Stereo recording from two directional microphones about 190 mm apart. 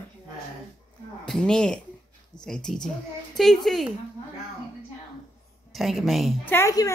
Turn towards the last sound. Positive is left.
turn(degrees=15)  # may be behind; listen again after turning